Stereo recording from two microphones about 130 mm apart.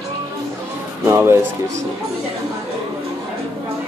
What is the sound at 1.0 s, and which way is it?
Speech, 20° right (ahead or behind).